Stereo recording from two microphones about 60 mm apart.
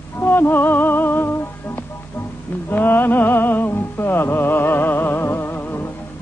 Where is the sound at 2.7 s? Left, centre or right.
Left.